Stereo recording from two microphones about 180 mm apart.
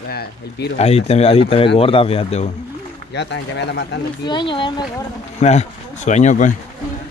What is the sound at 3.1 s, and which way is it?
Speech, 70° left (ahead or behind).